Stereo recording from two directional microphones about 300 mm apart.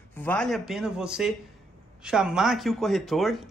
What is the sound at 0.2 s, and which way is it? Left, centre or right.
Speech, centre.